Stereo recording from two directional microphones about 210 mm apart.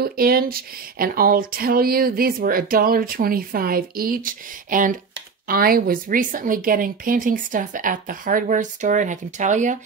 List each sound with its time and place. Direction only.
0.0 s a woman's voice: 45° right (ahead or behind)